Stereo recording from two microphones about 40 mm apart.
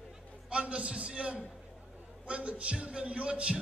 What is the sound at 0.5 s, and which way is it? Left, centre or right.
A man's voice, right.